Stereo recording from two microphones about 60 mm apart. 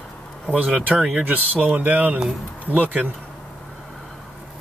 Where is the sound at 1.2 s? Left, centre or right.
Right.